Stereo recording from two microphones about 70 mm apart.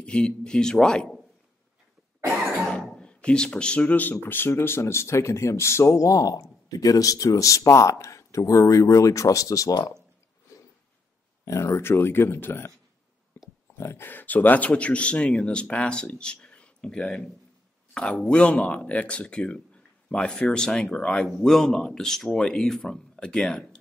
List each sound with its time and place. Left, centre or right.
0.0 s speech: centre
2.6 s cough: centre
3.0 s speech: centre; by 9.9 s left
11.4 s speech: left
13.4 s a sound: left
13.7 s speech: left; by 23.8 s centre